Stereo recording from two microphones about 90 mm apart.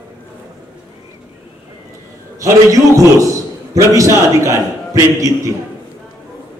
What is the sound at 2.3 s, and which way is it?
A man's voice, 35° right (ahead or behind).